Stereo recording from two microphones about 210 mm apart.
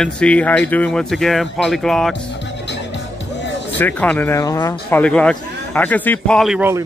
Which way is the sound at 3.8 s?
10° left (ahead or behind).